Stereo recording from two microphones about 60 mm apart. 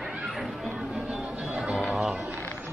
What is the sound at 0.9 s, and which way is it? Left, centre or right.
Music, centre.